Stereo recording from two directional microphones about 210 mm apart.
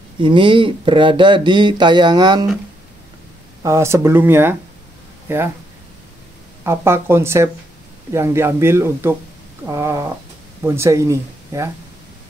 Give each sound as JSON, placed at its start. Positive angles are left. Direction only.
{"t": 0.2, "sound": "speech", "side_deg": -25}
{"t": 3.6, "sound": "speech", "side_deg": -15}
{"t": 6.6, "sound": "speech", "side_deg": -10}